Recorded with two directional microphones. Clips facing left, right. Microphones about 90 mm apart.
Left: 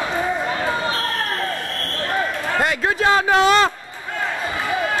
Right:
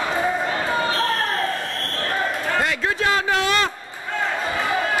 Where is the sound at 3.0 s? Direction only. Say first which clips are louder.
Left 6 dB; 30° left (ahead or behind).